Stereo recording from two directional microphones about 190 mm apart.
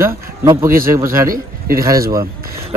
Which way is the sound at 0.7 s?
50° right (ahead or behind).